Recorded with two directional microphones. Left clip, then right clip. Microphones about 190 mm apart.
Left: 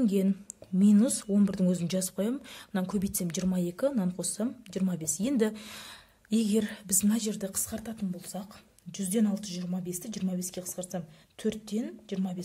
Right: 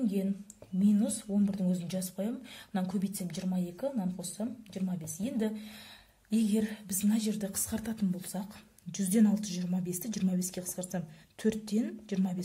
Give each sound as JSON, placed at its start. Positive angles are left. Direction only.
{"t": 0.0, "sound": "speech", "side_deg": 40}
{"t": 7.7, "sound": "a woman's voice", "side_deg": 0}